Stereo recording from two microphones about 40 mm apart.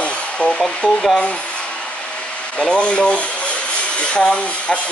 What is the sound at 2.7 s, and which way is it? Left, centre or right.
Speech, left.